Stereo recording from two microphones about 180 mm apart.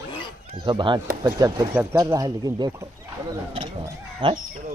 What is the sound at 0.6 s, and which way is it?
Speech, 25° right (ahead or behind).